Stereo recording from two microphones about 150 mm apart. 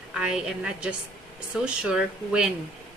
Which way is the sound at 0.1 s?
5° right (ahead or behind).